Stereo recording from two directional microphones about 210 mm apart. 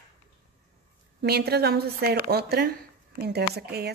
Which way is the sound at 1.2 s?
50° right (ahead or behind).